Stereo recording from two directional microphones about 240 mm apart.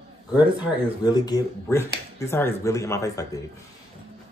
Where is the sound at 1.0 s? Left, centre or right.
Centre.